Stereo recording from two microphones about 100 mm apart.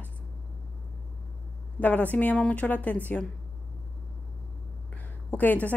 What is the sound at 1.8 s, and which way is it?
A woman's voice, 15° left (ahead or behind).